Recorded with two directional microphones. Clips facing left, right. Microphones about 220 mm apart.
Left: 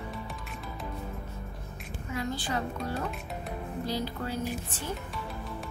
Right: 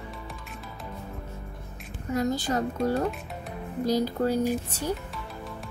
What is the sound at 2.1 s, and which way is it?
Speech, 40° right (ahead or behind).